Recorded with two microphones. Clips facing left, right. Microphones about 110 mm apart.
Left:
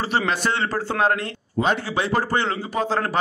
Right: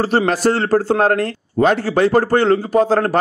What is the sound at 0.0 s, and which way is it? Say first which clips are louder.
Speech: right 7 dB; 45° right (ahead or behind).